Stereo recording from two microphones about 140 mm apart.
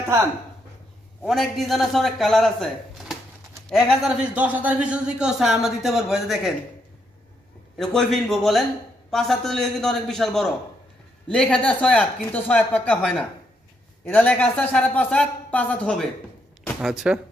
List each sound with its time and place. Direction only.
0.0 s speech: 15° right (ahead or behind)
1.2 s speech: centre (ahead or behind)
7.7 s speech: centre (ahead or behind)
16.8 s speech: 5° right (ahead or behind)